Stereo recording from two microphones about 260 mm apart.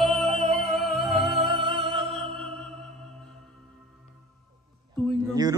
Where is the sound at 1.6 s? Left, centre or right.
Centre.